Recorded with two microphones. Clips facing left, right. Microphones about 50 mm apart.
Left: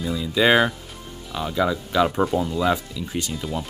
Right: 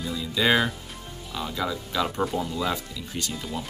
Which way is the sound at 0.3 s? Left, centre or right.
Left.